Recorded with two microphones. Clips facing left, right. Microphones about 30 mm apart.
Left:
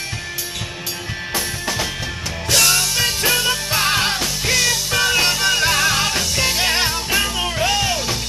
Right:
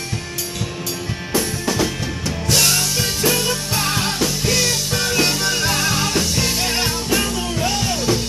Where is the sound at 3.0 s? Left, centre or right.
Centre.